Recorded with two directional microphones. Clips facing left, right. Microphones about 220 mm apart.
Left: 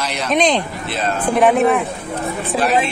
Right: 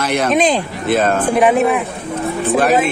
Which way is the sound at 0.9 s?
50° right (ahead or behind).